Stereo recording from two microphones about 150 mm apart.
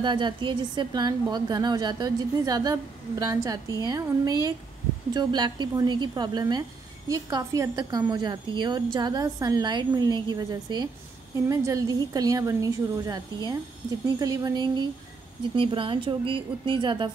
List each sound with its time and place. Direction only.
0.0 s a woman's voice: 30° right (ahead or behind)